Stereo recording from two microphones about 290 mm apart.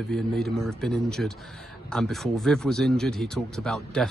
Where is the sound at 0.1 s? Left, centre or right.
Centre.